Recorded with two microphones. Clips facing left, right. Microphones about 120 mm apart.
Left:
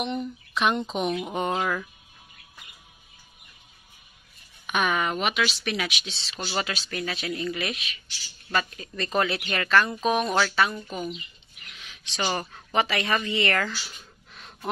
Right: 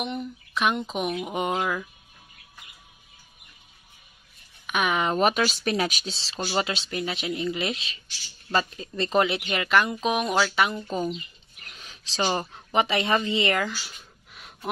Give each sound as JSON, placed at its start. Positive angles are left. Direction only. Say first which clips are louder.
{"t": 0.0, "sound": "speech", "louder": "left 2 dB", "side_deg": -5}
{"t": 4.8, "sound": "speech", "louder": "right 1 dB", "side_deg": -20}
{"t": 5.1, "sound": "speech", "louder": "right 4 dB", "side_deg": -40}
{"t": 6.5, "sound": "speech", "louder": "right 3 dB", "side_deg": -25}
{"t": 10.9, "sound": "a woman's voice", "louder": "right 4 dB", "side_deg": -35}
{"t": 14.3, "sound": "gasp", "louder": "even", "side_deg": -10}